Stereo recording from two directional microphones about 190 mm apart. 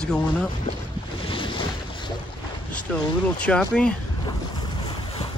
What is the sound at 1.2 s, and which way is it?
Boat, 25° left (ahead or behind).